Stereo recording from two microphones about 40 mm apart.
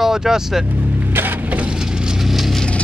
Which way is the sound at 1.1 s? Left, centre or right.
Right.